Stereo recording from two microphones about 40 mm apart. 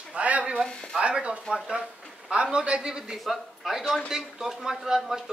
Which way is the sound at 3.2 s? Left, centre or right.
Centre.